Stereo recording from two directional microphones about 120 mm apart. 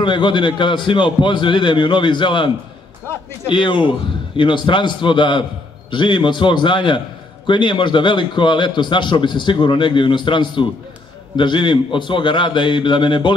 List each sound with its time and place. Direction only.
0.0 s a man's voice: 40° left (ahead or behind)